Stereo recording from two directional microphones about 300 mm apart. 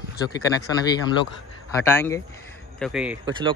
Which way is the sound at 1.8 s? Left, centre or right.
Centre.